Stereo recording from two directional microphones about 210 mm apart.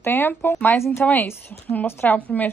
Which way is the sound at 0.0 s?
10° left (ahead or behind).